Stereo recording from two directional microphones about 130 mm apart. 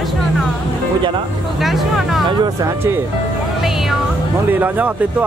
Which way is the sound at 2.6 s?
20° right (ahead or behind).